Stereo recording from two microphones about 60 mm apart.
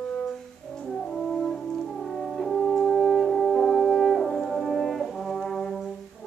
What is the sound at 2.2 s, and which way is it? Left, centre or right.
French horn, centre.